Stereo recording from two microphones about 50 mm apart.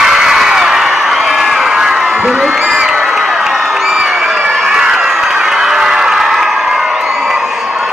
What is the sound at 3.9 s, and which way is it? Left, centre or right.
Crowd, centre.